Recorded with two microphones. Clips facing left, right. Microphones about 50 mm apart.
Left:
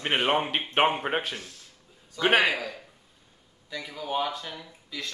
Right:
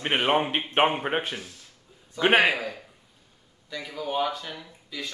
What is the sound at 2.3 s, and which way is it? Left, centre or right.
Speech, right.